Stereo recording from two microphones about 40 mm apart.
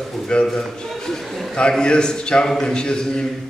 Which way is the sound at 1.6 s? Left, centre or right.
Left.